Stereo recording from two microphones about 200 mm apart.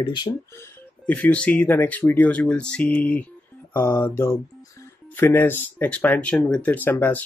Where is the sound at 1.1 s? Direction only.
5° left (ahead or behind).